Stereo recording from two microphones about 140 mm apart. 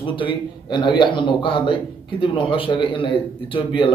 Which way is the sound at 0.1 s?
35° left (ahead or behind).